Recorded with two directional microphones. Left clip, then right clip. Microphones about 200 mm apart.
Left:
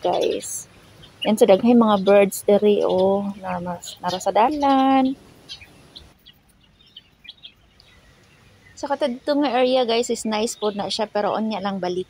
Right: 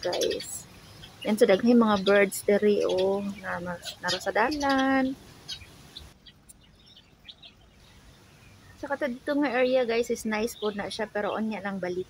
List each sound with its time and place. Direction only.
1.2 s a woman's voice: 15° left (ahead or behind)
3.3 s speech: centre (ahead or behind)
4.2 s a woman's voice: 10° left (ahead or behind)
8.8 s a woman's voice: 10° left (ahead or behind)